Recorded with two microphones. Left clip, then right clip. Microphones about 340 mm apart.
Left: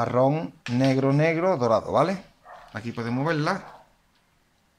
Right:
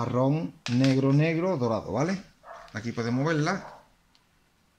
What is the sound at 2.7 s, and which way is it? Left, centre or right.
Speech, centre.